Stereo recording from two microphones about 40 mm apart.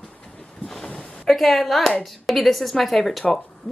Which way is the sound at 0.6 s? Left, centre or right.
Centre.